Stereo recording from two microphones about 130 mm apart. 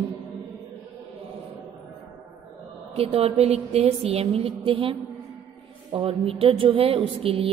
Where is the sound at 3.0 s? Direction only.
50° right (ahead or behind).